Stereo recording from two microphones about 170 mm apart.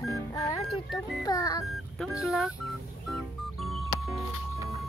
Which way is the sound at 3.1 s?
Centre (ahead or behind).